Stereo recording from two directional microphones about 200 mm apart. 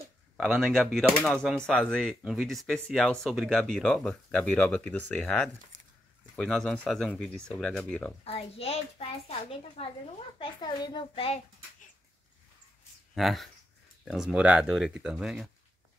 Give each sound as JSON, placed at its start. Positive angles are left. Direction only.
{"t": 0.6, "sound": "speech", "side_deg": 0}
{"t": 5.7, "sound": "a sound", "side_deg": -65}
{"t": 6.3, "sound": "speech", "side_deg": 0}
{"t": 8.2, "sound": "a child's voice", "side_deg": 30}
{"t": 13.1, "sound": "speech", "side_deg": 0}